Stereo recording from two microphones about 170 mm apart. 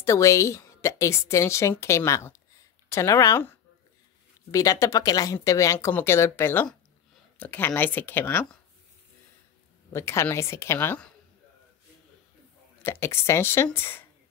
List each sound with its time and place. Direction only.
0.0 s a woman's voice: 15° left (ahead or behind)
9.9 s a woman's voice: 15° left (ahead or behind)
12.8 s a woman's voice: 15° left (ahead or behind)